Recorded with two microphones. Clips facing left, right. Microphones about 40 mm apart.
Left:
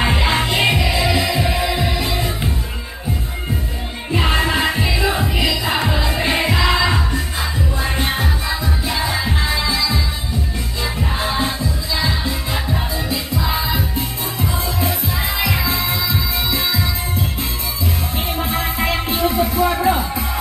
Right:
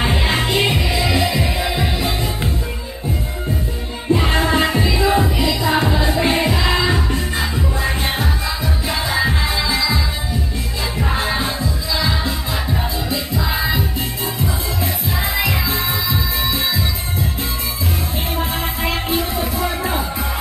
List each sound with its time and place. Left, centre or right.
0.0 s music: left
1.6 s music: right
4.1 s music: left
7.8 s music: left
9.0 s music: right
11.1 s music: right
13.4 s music: right
15.4 s music: left
18.5 s music: left